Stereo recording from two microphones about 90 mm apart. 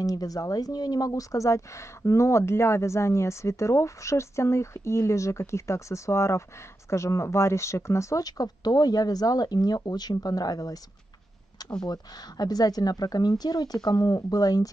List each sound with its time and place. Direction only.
0.0 s speech: 40° left (ahead or behind)
11.8 s speech: 50° left (ahead or behind)